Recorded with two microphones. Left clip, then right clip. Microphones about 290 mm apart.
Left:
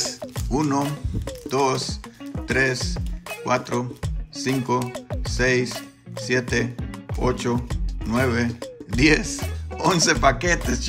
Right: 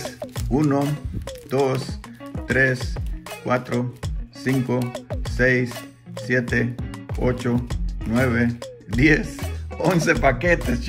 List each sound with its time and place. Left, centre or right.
0.0 s music: centre
3.4 s speech: centre
4.9 s music: centre
6.1 s speech: centre